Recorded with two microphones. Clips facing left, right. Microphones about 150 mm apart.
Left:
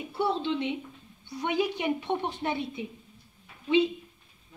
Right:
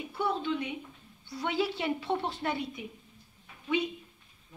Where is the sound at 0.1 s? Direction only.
30° left (ahead or behind).